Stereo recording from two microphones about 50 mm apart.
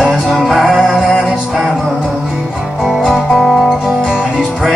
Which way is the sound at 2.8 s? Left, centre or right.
Centre.